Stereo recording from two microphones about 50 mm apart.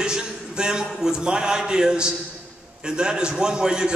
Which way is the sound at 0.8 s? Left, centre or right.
Centre.